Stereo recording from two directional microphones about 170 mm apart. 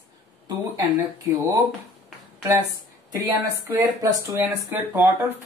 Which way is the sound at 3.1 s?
20° right (ahead or behind).